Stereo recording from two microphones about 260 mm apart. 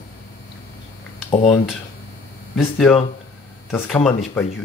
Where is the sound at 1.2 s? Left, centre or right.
Centre.